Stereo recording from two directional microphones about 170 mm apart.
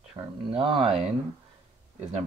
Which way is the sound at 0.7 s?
Centre (ahead or behind).